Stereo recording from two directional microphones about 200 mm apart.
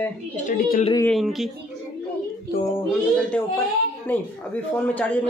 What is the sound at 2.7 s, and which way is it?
A man's voice, 5° left (ahead or behind).